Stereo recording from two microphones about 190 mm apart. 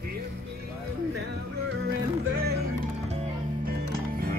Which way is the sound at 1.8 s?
60° right (ahead or behind).